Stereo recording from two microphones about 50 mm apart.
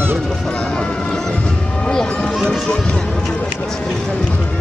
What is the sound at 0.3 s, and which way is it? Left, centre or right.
Music, centre.